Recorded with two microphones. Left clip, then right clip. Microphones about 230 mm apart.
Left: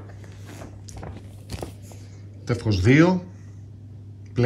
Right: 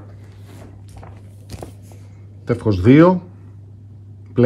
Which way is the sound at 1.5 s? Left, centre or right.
Centre.